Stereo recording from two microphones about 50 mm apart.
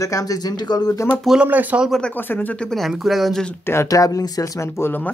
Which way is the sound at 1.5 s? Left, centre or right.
Right.